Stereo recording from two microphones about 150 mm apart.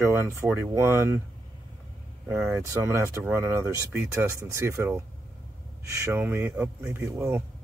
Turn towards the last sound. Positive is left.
turn(degrees=-20)  # may be behind; listen again after turning